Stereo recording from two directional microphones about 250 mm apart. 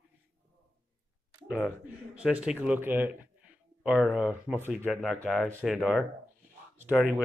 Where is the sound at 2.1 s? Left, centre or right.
Centre.